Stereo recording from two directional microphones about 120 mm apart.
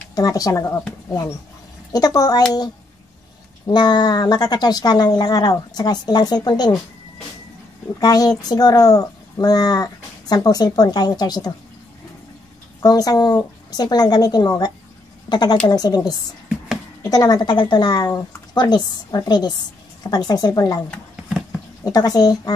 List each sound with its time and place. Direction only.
0.1 s speech: 30° left (ahead or behind)
1.9 s speech: 30° left (ahead or behind)
3.6 s speech: 35° left (ahead or behind)
8.0 s speech: 30° left (ahead or behind)
12.8 s speech: 30° left (ahead or behind)
21.8 s speech: 30° left (ahead or behind)